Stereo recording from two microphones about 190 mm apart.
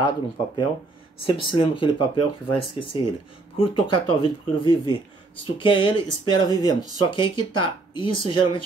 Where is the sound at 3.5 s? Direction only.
30° left (ahead or behind).